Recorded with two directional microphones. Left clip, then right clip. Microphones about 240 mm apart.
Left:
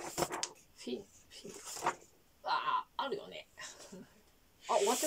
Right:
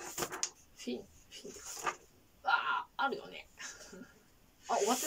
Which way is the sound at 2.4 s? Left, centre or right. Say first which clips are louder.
Right 2 dB; left.